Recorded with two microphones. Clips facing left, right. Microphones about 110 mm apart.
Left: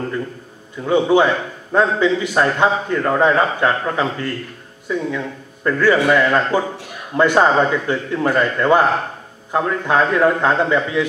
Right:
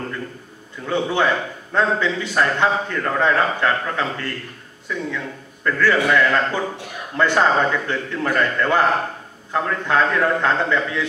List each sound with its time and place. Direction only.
0.8 s a man's voice: 15° left (ahead or behind)